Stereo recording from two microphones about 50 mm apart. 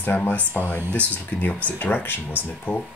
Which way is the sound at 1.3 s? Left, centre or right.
Left.